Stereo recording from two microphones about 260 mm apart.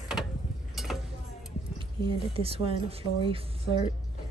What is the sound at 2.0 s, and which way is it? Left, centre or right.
Speech, centre.